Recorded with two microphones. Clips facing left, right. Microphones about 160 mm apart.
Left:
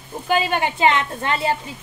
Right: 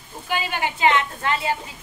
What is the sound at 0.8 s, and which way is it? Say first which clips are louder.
Speech: right 1 dB; 30° left (ahead or behind).